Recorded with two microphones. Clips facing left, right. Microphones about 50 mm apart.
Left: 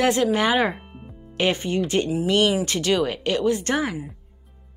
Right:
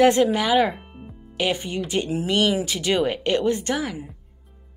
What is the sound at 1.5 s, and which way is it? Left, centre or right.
Speech, centre.